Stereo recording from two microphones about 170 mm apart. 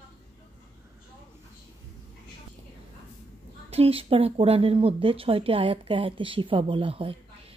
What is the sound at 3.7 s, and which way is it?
Speech, 35° right (ahead or behind).